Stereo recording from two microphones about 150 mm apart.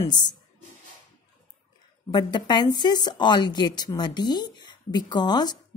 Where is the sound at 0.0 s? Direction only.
30° left (ahead or behind).